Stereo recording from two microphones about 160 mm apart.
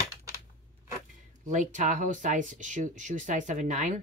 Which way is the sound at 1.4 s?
50° right (ahead or behind).